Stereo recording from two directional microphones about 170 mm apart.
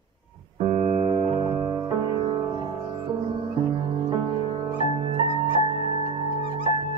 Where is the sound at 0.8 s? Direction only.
30° right (ahead or behind).